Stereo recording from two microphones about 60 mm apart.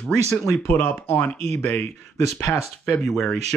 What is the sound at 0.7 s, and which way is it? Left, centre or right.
Speech, left.